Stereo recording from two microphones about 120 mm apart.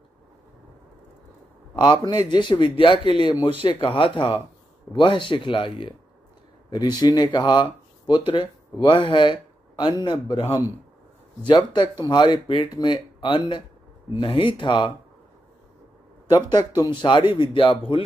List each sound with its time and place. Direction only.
1.8 s speech: 40° left (ahead or behind)
11.4 s speech: 40° left (ahead or behind)
16.5 s speech: 35° left (ahead or behind)